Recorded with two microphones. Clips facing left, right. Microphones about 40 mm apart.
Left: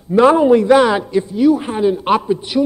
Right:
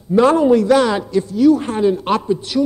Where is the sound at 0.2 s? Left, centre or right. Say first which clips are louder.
Left 2 dB; centre.